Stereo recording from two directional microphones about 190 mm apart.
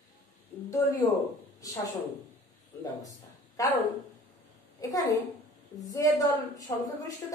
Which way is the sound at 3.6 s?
15° left (ahead or behind).